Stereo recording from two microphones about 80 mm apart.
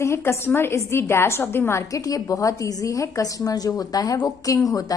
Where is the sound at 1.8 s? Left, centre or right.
Left.